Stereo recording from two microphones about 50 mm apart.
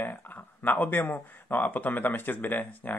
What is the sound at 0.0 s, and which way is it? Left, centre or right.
Speech, left.